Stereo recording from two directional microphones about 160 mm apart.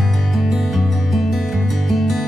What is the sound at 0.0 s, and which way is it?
Music, centre (ahead or behind).